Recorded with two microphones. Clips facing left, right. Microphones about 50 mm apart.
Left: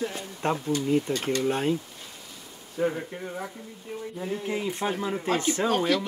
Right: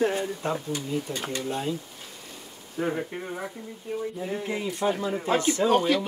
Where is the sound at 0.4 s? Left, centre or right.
Left.